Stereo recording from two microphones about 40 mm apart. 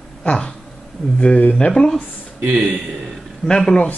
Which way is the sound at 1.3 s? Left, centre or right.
Left.